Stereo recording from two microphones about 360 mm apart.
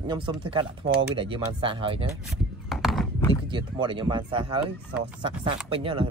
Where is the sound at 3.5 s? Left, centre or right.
Centre.